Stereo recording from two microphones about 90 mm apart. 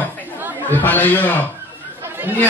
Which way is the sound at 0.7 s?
20° left (ahead or behind).